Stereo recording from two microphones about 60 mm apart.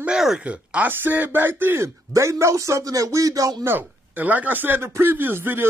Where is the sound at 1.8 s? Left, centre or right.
Right.